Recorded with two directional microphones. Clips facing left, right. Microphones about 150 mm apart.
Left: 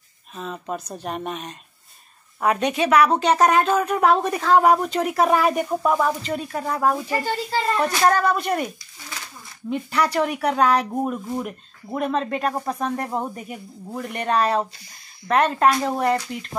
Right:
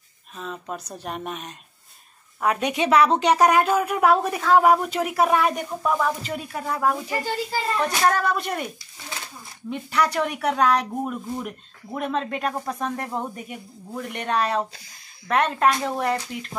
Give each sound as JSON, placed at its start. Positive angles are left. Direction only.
{"t": 0.4, "sound": "speech", "side_deg": 0}
{"t": 2.7, "sound": "speech", "side_deg": -20}
{"t": 6.2, "sound": "speech", "side_deg": -5}
{"t": 9.7, "sound": "speech", "side_deg": 0}